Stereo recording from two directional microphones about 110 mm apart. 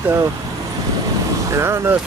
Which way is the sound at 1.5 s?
25° right (ahead or behind).